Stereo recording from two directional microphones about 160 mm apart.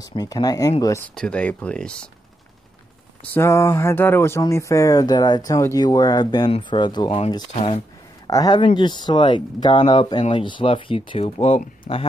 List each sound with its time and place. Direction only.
0.0 s speech: 25° left (ahead or behind)
1.1 s speech: 5° left (ahead or behind)
3.3 s speech: 15° left (ahead or behind)
7.5 s speech: 40° left (ahead or behind)
8.3 s speech: 25° left (ahead or behind)